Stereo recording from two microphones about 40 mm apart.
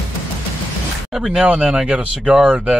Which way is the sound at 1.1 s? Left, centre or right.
Centre.